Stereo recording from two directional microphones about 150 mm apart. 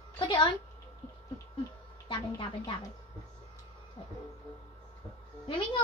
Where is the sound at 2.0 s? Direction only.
35° left (ahead or behind).